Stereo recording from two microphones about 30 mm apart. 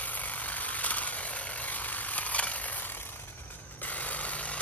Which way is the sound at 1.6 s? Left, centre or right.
Left.